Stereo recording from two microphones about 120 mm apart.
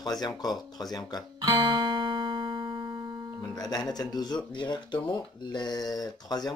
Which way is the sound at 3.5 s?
35° left (ahead or behind).